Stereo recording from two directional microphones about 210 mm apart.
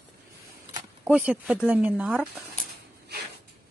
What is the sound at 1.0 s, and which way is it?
Speech, 5° right (ahead or behind).